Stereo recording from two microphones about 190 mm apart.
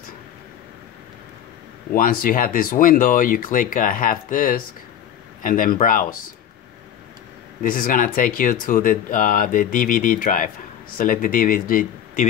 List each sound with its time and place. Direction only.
1.9 s speech: 45° left (ahead or behind)
7.6 s speech: 45° left (ahead or behind)